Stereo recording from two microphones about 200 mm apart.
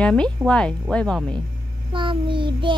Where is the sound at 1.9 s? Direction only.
25° right (ahead or behind).